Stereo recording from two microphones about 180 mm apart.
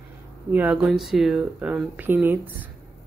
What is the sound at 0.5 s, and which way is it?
Speech, 5° right (ahead or behind).